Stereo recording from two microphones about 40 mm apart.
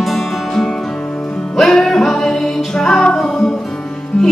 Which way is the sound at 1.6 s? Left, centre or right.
Centre.